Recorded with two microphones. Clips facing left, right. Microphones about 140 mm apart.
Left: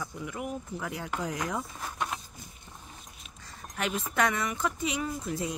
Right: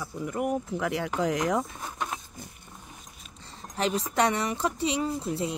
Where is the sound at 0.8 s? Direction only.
85° right.